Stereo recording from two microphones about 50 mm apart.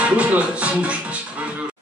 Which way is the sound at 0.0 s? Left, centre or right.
Right.